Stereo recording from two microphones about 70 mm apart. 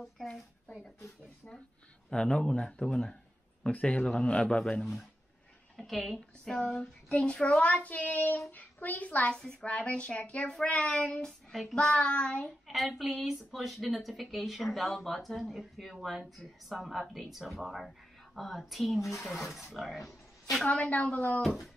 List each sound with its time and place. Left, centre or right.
0.0 s a woman's voice: centre
2.0 s speech: centre
5.8 s a woman's voice: centre
12.4 s a woman's voice: centre
20.7 s a woman's voice: centre
21.4 s a woman's voice: centre